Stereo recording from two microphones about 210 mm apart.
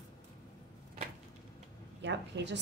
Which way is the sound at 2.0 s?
55° right (ahead or behind).